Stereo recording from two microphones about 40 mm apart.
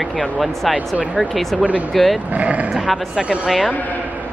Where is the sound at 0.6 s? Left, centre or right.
Centre.